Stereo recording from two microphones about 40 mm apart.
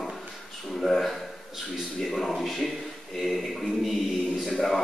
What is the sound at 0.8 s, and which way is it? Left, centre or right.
A man's voice, centre.